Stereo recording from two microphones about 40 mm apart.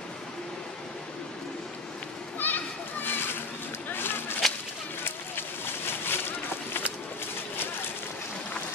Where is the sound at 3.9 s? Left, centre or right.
Left.